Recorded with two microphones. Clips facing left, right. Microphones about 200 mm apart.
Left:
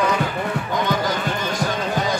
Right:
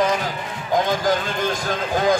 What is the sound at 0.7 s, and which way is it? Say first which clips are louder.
Speech: right 5 dB; 45° right (ahead or behind).